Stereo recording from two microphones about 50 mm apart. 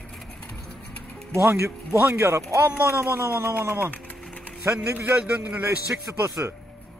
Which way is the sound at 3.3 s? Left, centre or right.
Right.